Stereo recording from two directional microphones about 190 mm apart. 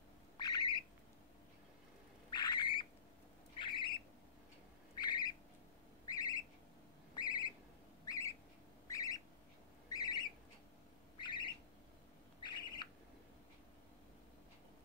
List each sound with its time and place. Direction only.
0.4 s squawk: 20° left (ahead or behind)
2.3 s squawk: 25° left (ahead or behind)
4.9 s a sound: 20° left (ahead or behind)
8.8 s squawk: 20° left (ahead or behind)
9.8 s bird: 20° left (ahead or behind)